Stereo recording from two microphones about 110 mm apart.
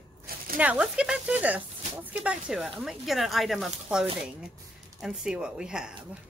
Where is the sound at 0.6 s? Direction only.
10° right (ahead or behind).